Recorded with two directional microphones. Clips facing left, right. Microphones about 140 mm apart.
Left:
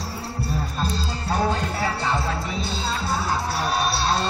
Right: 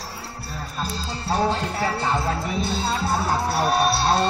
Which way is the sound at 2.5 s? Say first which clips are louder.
Right 3 dB; 55° right (ahead or behind).